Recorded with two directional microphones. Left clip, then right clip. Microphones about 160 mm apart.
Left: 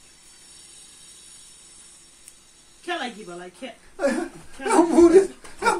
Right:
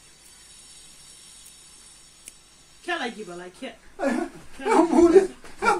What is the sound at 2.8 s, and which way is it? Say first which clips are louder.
A woman's voice: even; centre (ahead or behind).